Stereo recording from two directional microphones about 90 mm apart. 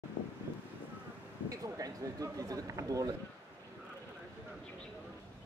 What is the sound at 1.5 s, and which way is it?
Speech, 40° right (ahead or behind).